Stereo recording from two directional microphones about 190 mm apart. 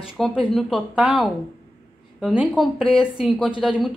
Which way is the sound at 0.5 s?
Centre (ahead or behind).